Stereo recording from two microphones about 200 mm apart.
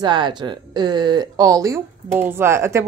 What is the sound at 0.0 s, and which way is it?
Speech, 20° right (ahead or behind).